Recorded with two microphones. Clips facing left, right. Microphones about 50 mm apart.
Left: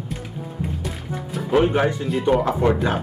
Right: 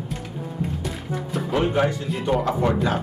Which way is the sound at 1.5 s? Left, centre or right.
Centre.